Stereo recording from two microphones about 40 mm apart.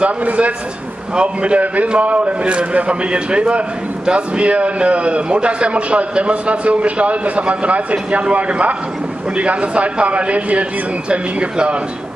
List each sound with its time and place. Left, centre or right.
0.0 s a man's voice: right